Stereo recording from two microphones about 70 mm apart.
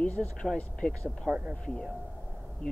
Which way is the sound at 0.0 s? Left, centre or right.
Centre.